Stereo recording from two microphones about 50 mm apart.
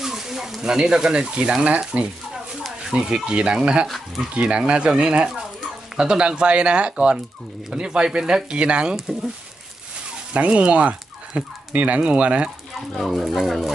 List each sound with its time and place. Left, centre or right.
0.0 s speech: centre
3.8 s speech: centre
4.4 s speech: right
10.3 s speech: right
13.0 s speech: centre